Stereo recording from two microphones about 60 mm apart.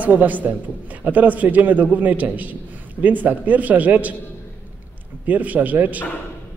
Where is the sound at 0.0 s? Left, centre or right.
Right.